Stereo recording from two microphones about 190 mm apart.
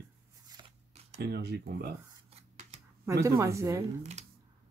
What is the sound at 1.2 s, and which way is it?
Speech, 60° right (ahead or behind).